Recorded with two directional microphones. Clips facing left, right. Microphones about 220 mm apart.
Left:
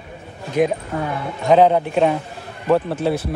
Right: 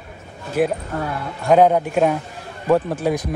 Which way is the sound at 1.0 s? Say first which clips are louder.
Left 1 dB; 10° right (ahead or behind).